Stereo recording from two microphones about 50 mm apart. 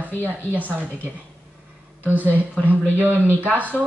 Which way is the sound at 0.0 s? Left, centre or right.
Right.